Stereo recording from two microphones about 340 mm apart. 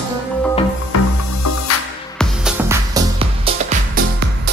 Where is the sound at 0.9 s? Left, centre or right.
Left.